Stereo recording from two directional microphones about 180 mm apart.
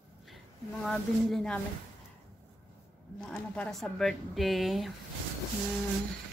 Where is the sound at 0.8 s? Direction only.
5° left (ahead or behind).